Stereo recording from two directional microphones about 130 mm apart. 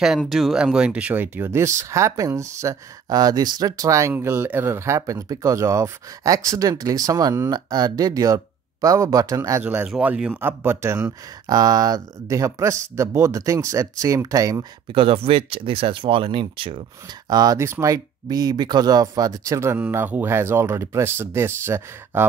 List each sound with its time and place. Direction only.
0.0 s speech: 5° right (ahead or behind); by 9.6 s 25° right (ahead or behind)
9.6 s speech: 15° right (ahead or behind)
14.9 s speech: 45° right (ahead or behind)
17.3 s speech: 30° right (ahead or behind)